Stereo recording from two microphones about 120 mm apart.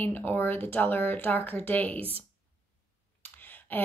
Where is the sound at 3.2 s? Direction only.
15° left (ahead or behind).